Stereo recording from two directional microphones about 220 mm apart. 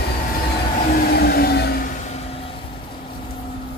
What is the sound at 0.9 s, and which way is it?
Vehicle, 45° left (ahead or behind).